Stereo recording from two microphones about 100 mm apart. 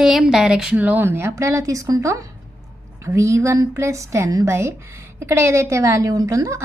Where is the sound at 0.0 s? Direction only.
5° right (ahead or behind).